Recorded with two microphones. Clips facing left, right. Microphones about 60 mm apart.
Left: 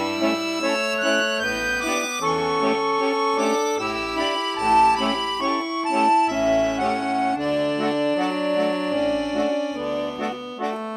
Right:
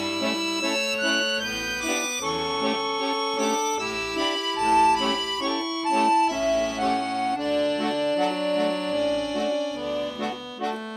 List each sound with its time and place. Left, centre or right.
3.3 s organ: left
4.6 s music: left